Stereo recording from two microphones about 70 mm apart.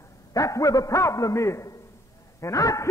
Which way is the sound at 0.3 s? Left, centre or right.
Left.